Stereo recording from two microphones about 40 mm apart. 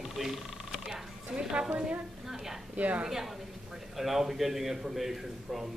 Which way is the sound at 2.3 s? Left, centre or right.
Centre.